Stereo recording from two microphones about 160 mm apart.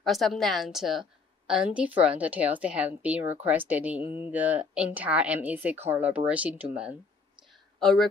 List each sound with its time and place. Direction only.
0.0 s a woman's voice: centre (ahead or behind)